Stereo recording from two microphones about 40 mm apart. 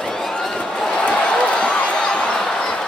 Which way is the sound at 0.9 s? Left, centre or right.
Left.